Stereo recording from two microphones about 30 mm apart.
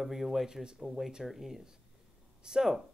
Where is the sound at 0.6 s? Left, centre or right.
Right.